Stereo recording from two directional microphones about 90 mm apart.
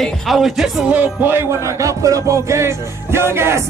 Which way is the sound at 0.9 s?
20° right (ahead or behind).